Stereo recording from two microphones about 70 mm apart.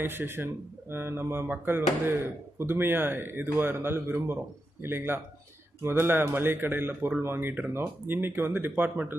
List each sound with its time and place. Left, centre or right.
0.0 s speech: right